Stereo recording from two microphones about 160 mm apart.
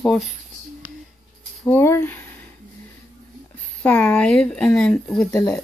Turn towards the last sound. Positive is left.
turn(degrees=20)  # may be behind; listen again after turning